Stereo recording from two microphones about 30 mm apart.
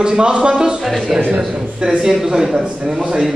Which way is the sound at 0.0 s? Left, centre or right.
Right.